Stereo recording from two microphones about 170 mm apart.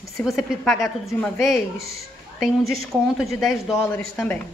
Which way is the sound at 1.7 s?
65° right (ahead or behind).